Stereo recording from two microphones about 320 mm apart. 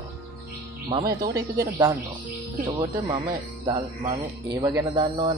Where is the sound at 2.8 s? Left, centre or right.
Centre.